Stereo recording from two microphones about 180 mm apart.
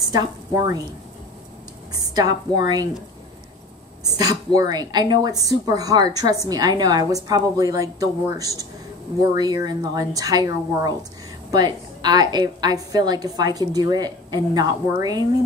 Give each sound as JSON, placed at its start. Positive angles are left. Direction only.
{"t": 0.0, "sound": "a woman's voice", "side_deg": -20}
{"t": 2.0, "sound": "a woman's voice", "side_deg": -20}
{"t": 4.0, "sound": "a woman's voice", "side_deg": -20}